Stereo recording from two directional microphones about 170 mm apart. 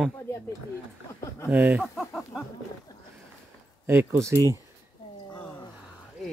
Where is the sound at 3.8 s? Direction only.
10° right (ahead or behind).